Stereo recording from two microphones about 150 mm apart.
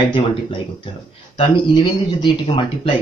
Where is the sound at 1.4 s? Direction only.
35° left (ahead or behind).